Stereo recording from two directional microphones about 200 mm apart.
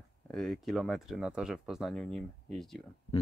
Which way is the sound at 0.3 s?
Centre (ahead or behind).